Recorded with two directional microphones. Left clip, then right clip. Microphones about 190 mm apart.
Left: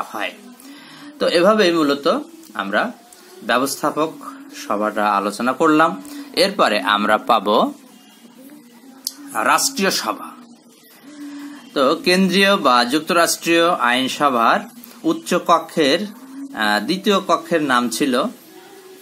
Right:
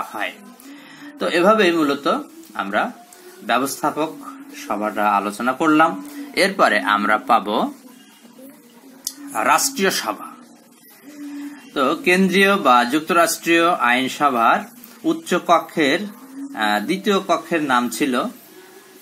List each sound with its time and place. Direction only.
1.1 s speech: 15° left (ahead or behind)
6.3 s speech: 15° left (ahead or behind)
7.0 s speech: 35° left (ahead or behind)
9.3 s speech: 10° left (ahead or behind)
11.7 s speech: 25° left (ahead or behind)